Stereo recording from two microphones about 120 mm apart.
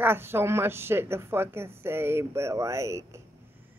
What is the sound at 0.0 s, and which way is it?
Speech, 20° right (ahead or behind).